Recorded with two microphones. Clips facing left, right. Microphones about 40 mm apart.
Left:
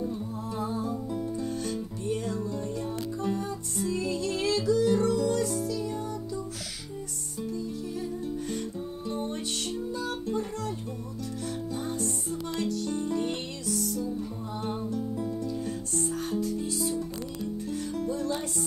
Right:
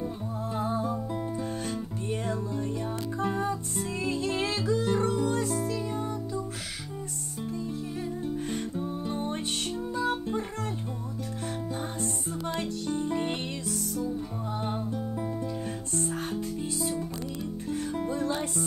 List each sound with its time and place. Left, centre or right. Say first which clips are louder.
0.6 s music: right 2 dB; right
2.0 s music: left 1 dB; right
8.7 s music: right 2 dB; right
12.5 s music: left 2 dB; right